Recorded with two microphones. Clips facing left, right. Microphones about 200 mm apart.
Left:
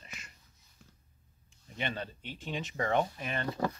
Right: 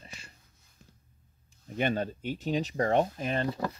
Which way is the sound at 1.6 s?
45° right (ahead or behind).